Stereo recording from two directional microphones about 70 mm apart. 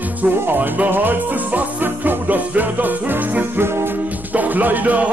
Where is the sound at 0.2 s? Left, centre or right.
Right.